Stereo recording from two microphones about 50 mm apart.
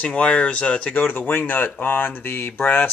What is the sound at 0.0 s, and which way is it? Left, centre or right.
Speech, left.